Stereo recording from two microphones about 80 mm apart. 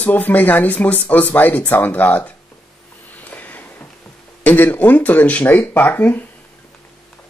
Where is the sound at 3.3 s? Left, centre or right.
Left.